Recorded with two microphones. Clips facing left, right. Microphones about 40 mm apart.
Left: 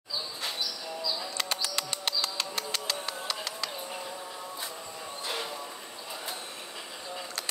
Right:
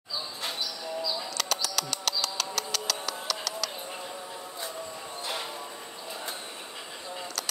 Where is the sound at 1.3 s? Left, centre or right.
Left.